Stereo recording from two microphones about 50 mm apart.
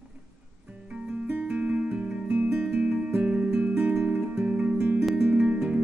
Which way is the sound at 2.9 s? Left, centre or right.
Right.